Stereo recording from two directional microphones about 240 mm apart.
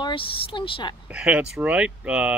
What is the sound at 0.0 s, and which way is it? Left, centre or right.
Speech, left.